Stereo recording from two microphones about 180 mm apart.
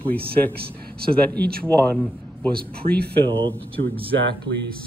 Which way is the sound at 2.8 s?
45° right (ahead or behind).